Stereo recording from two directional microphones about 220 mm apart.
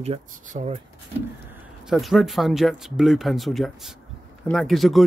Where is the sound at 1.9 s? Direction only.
Centre (ahead or behind).